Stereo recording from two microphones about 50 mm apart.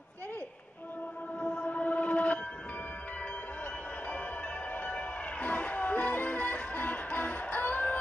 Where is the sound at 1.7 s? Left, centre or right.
Left.